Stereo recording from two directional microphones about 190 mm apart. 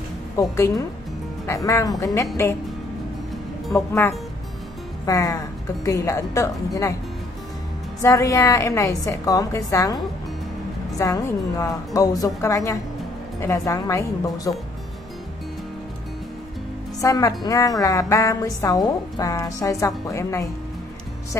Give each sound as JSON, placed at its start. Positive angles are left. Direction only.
{"t": 0.4, "sound": "speech", "side_deg": 15}
{"t": 3.7, "sound": "speech", "side_deg": 10}
{"t": 5.0, "sound": "speech", "side_deg": 15}
{"t": 8.0, "sound": "speech", "side_deg": 15}
{"t": 11.0, "sound": "speech", "side_deg": 15}
{"t": 17.0, "sound": "speech", "side_deg": 15}